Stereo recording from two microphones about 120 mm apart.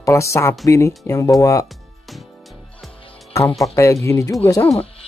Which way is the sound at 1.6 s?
Centre (ahead or behind).